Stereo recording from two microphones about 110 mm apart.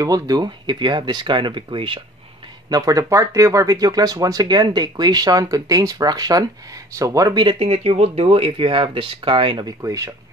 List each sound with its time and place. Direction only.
0.0 s speech: 35° right (ahead or behind); by 2.0 s 50° right (ahead or behind)
2.7 s speech: 35° right (ahead or behind)
7.4 s speech: 65° right (ahead or behind)
9.8 s speech: 30° right (ahead or behind)